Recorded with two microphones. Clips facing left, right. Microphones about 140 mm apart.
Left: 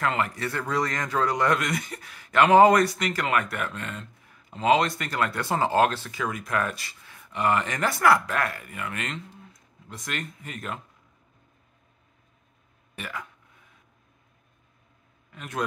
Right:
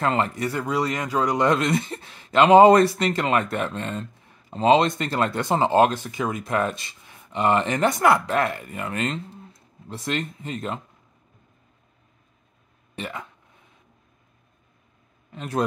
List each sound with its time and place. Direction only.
0.0 s speech: 30° right (ahead or behind)
0.5 s speech: 15° right (ahead or behind)
12.9 s speech: 25° right (ahead or behind)
15.3 s a man's voice: 30° right (ahead or behind)